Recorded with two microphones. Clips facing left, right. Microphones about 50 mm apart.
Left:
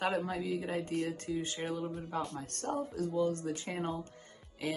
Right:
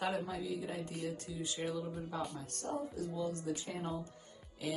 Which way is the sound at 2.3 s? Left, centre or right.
Left.